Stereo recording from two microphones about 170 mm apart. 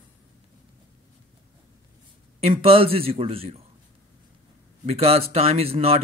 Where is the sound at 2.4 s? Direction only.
35° right (ahead or behind).